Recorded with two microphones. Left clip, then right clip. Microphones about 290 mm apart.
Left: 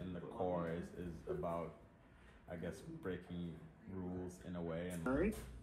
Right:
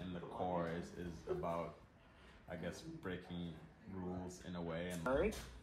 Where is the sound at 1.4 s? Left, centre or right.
Centre.